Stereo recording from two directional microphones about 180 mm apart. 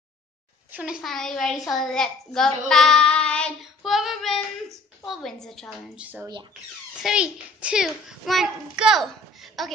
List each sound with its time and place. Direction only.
0.7 s a child's voice: 5° right (ahead or behind)
1.7 s child singing: centre (ahead or behind)
7.0 s a child's voice: 5° right (ahead or behind)